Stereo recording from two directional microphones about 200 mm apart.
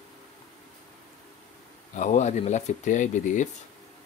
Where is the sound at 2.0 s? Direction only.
35° left (ahead or behind).